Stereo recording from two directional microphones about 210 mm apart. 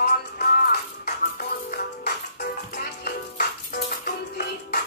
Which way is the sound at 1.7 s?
45° left (ahead or behind).